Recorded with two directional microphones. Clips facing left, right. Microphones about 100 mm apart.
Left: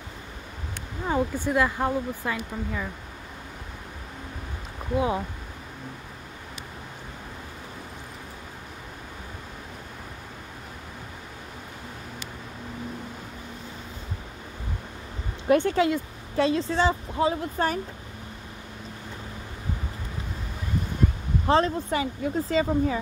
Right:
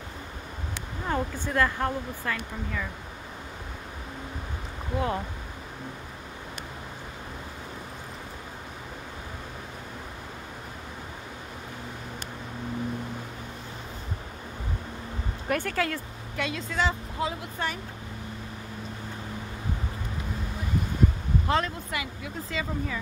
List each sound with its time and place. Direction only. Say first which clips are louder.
1.0 s speech: left 4 dB; 10° left (ahead or behind)
4.9 s speech: left 4 dB; 15° left (ahead or behind)
15.4 s speech: left 7 dB; 25° left (ahead or behind)
16.3 s speech: left 7 dB; 35° left (ahead or behind)
21.5 s speech: left 7 dB; 35° left (ahead or behind)